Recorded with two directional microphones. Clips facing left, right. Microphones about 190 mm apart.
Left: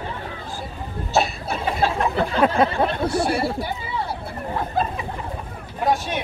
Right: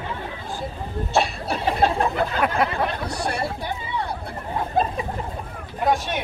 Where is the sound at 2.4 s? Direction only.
30° left (ahead or behind).